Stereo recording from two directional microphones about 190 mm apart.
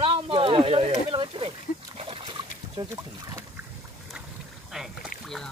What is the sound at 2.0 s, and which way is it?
Dog, 30° right (ahead or behind).